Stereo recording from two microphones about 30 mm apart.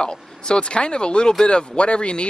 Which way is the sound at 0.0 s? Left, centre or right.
Left.